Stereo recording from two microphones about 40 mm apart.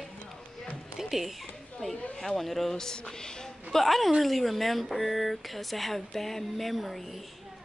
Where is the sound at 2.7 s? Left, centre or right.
Centre.